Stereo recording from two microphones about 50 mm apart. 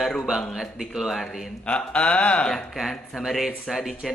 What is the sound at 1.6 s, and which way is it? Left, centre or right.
Speech, left.